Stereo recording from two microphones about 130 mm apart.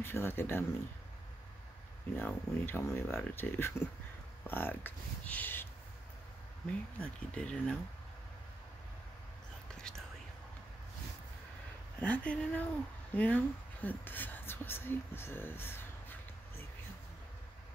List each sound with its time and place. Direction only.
0.0 s speech: 20° left (ahead or behind)
2.1 s speech: 15° left (ahead or behind)
7.0 s speech: 10° left (ahead or behind)
9.8 s whispering: 5° left (ahead or behind)
12.0 s speech: 10° left (ahead or behind)